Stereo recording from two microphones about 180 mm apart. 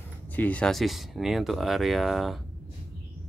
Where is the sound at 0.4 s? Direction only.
5° left (ahead or behind).